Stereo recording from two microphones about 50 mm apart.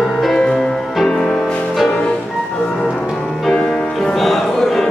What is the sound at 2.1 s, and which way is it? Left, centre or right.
Music, centre.